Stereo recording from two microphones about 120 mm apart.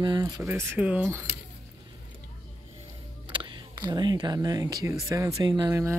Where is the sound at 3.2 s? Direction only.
40° right (ahead or behind).